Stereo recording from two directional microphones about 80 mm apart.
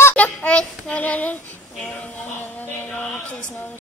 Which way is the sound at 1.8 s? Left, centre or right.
Centre.